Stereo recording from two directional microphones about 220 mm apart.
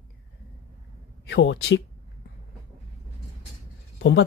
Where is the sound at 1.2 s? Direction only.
55° left (ahead or behind).